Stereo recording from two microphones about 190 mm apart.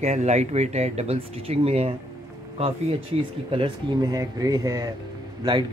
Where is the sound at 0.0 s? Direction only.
35° right (ahead or behind).